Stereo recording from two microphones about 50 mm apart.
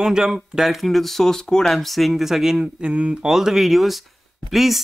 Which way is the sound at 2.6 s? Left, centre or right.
Right.